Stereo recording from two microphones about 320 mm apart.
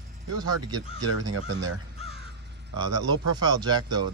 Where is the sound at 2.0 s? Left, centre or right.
Centre.